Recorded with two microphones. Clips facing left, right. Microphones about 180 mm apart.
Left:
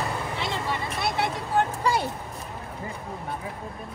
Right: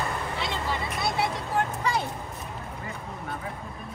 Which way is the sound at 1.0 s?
Centre (ahead or behind).